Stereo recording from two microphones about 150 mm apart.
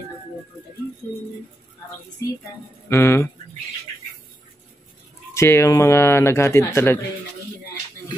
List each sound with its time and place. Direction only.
2.9 s speech: 15° left (ahead or behind)
5.3 s speech: 20° left (ahead or behind)